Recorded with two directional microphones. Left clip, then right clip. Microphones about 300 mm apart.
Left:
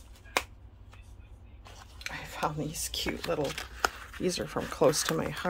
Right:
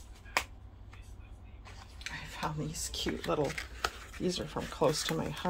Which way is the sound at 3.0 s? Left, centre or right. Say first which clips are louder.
Even; left.